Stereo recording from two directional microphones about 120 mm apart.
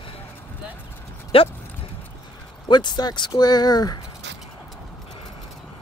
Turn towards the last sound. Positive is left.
turn(degrees=35)  # may be behind; listen again after turning